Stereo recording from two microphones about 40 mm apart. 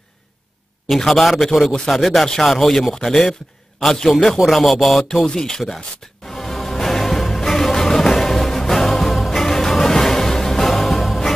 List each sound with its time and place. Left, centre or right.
0.8 s speech: centre
4.4 s speech: centre
5.0 s speech: centre
6.2 s music: centre